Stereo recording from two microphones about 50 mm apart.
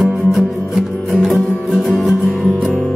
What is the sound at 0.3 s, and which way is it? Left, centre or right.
Music, centre.